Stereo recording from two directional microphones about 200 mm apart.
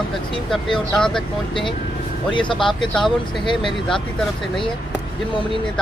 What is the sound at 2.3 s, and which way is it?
Speech, 25° left (ahead or behind).